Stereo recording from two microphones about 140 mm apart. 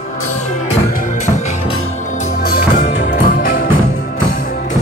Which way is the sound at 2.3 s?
90° left.